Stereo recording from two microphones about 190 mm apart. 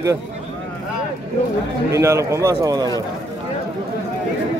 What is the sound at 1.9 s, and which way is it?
A man's voice, 15° right (ahead or behind).